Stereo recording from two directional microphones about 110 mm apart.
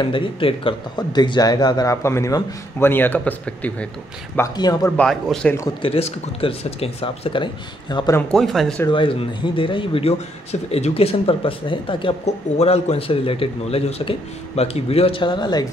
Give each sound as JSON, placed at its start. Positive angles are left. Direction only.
{"t": 0.0, "sound": "a man's voice", "side_deg": 50}
{"t": 0.9, "sound": "speech", "side_deg": 40}
{"t": 2.0, "sound": "a man's voice", "side_deg": 25}
{"t": 4.6, "sound": "speech", "side_deg": 40}
{"t": 4.9, "sound": "speech", "side_deg": 5}
{"t": 5.8, "sound": "a man's voice", "side_deg": 60}
{"t": 8.3, "sound": "speech", "side_deg": 0}
{"t": 8.9, "sound": "a man's voice", "side_deg": 50}
{"t": 12.5, "sound": "a man's voice", "side_deg": 70}